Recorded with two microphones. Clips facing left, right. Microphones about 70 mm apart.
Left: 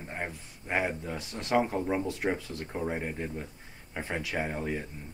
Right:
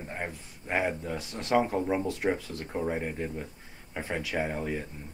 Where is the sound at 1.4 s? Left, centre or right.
Centre.